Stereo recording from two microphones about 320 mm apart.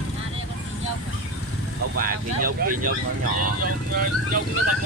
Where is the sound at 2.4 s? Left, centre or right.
Right.